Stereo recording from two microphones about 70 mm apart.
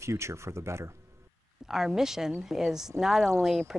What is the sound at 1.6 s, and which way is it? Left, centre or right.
Speech, centre.